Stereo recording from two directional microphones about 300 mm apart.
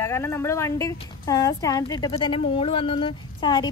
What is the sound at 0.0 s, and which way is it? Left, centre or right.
Speech, centre.